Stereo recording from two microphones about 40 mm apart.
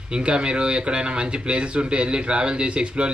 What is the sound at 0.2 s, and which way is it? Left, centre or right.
Speech, right.